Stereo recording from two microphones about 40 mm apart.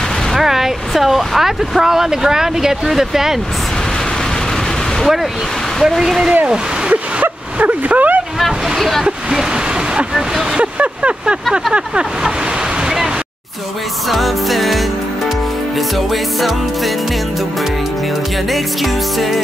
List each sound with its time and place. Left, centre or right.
0.4 s speech: centre
5.8 s music: centre
6.9 s a sound: right
8.7 s music: centre
9.0 s speech: centre
10.6 s vehicle: right
11.7 s speech: right
12.8 s a sound: centre
14.0 s music: centre
16.1 s music: centre
18.5 s music: centre